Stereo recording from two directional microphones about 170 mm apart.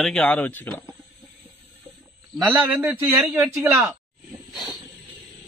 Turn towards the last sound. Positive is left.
turn(degrees=25)  # may be behind; listen again after turning